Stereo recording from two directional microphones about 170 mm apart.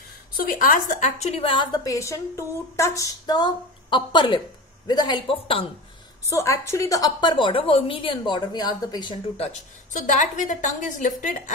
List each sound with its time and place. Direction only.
0.4 s a woman's voice: 55° left (ahead or behind); by 5.7 s 30° left (ahead or behind)
6.2 s a woman's voice: 20° left (ahead or behind)
9.5 s a woman's voice: 50° left (ahead or behind)